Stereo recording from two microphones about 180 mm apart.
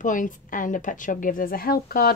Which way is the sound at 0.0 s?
45° left (ahead or behind).